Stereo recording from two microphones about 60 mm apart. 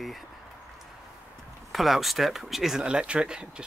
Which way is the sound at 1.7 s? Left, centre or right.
Centre.